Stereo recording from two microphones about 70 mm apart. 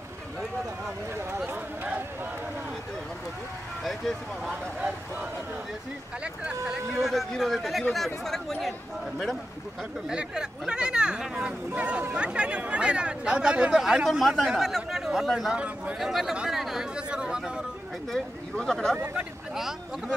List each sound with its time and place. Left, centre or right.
4.5 s speech: centre
6.2 s speech: centre
6.9 s speech: centre
10.0 s speech: centre
15.5 s speech: centre
16.0 s speech: centre
16.3 s chatter: centre
18.1 s speech: centre
19.5 s speech: centre